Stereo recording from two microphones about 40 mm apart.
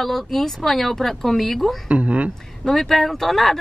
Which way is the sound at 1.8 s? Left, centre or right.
Right.